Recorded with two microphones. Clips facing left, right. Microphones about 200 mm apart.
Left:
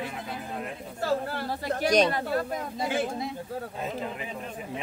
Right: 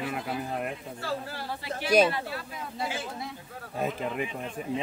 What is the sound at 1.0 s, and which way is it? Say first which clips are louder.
Speech: left 8 dB; 50° left (ahead or behind).